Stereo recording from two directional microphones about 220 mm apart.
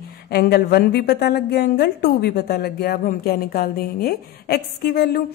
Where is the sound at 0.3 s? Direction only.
45° left (ahead or behind).